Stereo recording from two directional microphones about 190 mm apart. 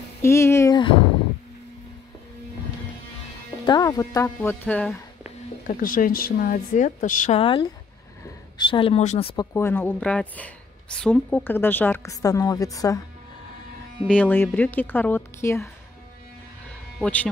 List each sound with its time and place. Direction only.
0.2 s speech: 15° left (ahead or behind)
3.6 s a woman's voice: 20° left (ahead or behind)
5.8 s speech: 45° left (ahead or behind)
7.3 s speech: 30° left (ahead or behind)
9.5 s a woman's voice: 15° left (ahead or behind)
14.0 s a woman's voice: 5° left (ahead or behind)